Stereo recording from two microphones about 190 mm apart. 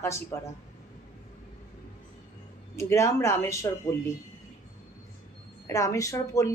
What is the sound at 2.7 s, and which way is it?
Speech, 15° left (ahead or behind).